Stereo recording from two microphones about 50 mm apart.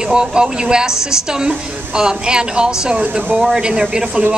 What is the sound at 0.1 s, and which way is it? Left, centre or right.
Speech, centre.